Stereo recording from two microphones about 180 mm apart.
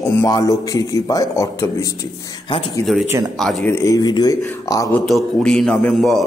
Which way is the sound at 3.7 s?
20° left (ahead or behind).